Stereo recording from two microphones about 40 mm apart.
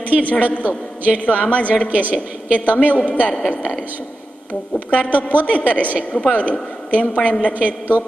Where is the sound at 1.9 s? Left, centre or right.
Right.